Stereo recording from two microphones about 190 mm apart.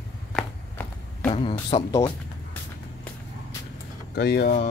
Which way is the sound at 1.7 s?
30° left (ahead or behind).